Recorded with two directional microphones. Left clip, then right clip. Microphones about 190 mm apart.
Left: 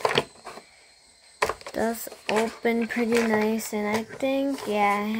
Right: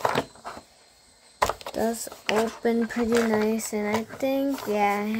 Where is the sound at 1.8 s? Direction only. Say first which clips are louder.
Left 1 dB; 5° right (ahead or behind).